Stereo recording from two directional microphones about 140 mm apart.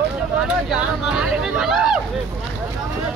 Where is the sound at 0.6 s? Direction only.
5° right (ahead or behind).